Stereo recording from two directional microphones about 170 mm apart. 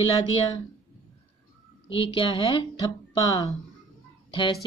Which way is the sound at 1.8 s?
30° left (ahead or behind).